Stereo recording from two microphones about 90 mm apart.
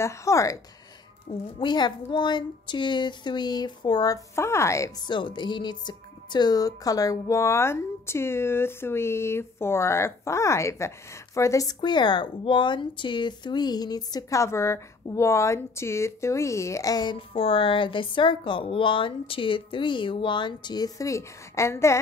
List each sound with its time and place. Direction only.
0.0 s a woman's voice: 35° left (ahead or behind)
1.3 s a woman's voice: 90° left
1.6 s speech: 55° left (ahead or behind)
4.4 s a woman's voice: 30° left (ahead or behind)
5.0 s a woman's voice: 60° left (ahead or behind); by 11.7 s 35° left (ahead or behind)
11.8 s speech: 55° left (ahead or behind)
14.4 s a woman's voice: 30° left (ahead or behind); by 17.2 s 50° left (ahead or behind)
17.3 s a woman's voice: 90° left; by 21.9 s 30° left (ahead or behind)